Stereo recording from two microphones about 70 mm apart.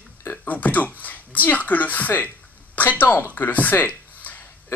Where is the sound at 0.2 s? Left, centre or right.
Left.